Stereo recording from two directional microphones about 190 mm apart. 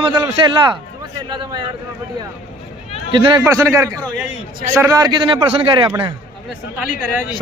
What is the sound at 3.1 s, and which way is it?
A man's voice, 25° right (ahead or behind).